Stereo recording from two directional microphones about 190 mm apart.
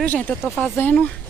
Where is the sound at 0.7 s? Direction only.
10° left (ahead or behind).